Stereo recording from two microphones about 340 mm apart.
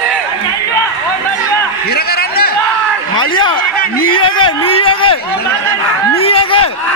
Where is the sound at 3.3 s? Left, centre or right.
Centre.